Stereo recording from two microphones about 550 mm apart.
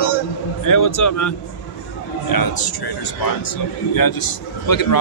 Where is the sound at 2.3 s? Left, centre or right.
Left.